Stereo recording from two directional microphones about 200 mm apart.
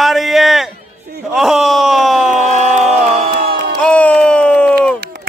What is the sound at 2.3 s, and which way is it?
Crowd, 35° right (ahead or behind).